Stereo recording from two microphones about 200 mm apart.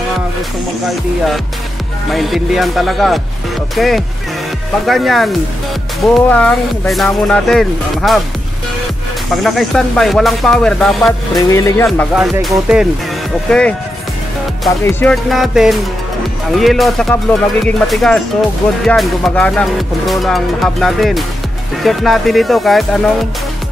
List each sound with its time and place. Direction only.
2.0 s music: centre (ahead or behind)
9.3 s music: centre (ahead or behind)
11.3 s speech: 15° left (ahead or behind)
12.2 s music: centre (ahead or behind)
14.7 s speech: 10° left (ahead or behind)
15.2 s music: centre (ahead or behind)